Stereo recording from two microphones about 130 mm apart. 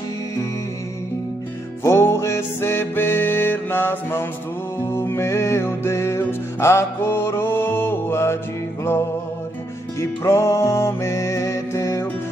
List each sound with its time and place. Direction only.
1.8 s music: 20° left (ahead or behind)
9.9 s music: 20° left (ahead or behind)